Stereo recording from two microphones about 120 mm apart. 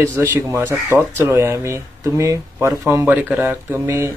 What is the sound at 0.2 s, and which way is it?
Speech, 25° right (ahead or behind).